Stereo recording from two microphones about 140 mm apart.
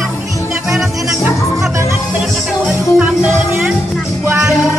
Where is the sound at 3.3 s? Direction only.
15° right (ahead or behind).